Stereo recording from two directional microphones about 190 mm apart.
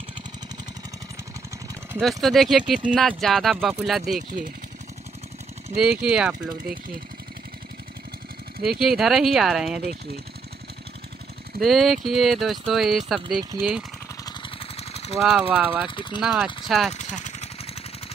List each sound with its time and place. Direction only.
2.0 s speech: centre (ahead or behind)
5.8 s speech: 5° right (ahead or behind)
8.6 s speech: centre (ahead or behind)
11.6 s speech: centre (ahead or behind)
14.2 s a sound: 30° left (ahead or behind)
15.1 s speech: 5° right (ahead or behind)
15.9 s speech: 25° left (ahead or behind)
16.2 s speech: 5° right (ahead or behind)
16.9 s a sound: 40° left (ahead or behind)